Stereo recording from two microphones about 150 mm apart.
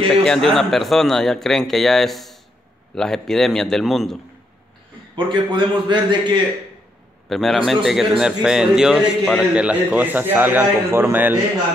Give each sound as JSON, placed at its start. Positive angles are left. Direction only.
{"t": 0.1, "sound": "a man's voice", "side_deg": 5}
{"t": 5.1, "sound": "a man's voice", "side_deg": -30}
{"t": 7.2, "sound": "a man's voice", "side_deg": 0}